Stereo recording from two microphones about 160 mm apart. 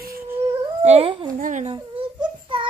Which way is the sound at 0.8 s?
40° right (ahead or behind).